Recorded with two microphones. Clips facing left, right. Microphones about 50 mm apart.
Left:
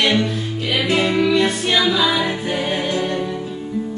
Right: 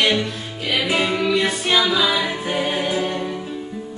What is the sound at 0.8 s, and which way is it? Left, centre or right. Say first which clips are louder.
Music: left 3 dB; centre.